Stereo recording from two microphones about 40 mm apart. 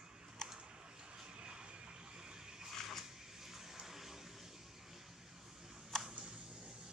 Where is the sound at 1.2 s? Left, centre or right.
Right.